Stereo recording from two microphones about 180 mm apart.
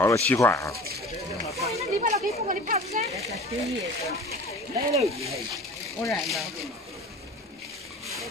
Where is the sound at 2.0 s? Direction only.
40° right (ahead or behind).